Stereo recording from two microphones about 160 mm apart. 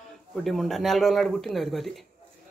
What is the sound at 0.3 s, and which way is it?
Speech, centre (ahead or behind).